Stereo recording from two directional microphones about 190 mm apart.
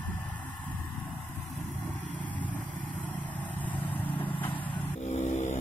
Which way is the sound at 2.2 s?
10° left (ahead or behind).